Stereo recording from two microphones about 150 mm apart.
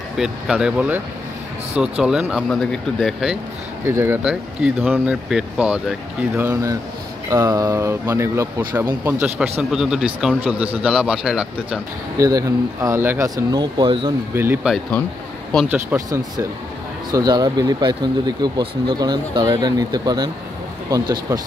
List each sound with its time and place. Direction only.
0.2 s a man's voice: 5° right (ahead or behind)
3.8 s speech: 15° right (ahead or behind)
4.2 s a man's voice: 5° right (ahead or behind)
12.2 s speech: 25° right (ahead or behind)
13.5 s speech: 30° right (ahead or behind)
14.3 s speech: 15° right (ahead or behind)
16.1 s speech: 25° right (ahead or behind)